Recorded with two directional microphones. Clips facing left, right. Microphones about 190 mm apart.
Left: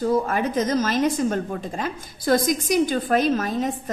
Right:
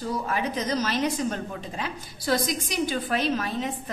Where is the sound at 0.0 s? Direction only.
50° left (ahead or behind).